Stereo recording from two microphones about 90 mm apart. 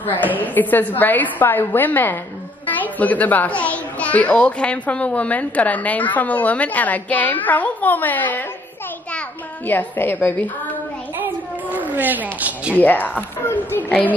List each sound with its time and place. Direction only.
0.0 s a woman's voice: 20° left (ahead or behind)
9.7 s a woman's voice: 20° left (ahead or behind)
11.1 s a sound: 20° right (ahead or behind)
12.7 s a woman's voice: 20° left (ahead or behind)